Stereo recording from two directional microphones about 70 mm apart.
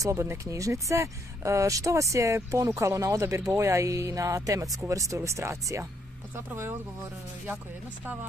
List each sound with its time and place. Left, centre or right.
0.0 s speech: right
8.0 s speech: right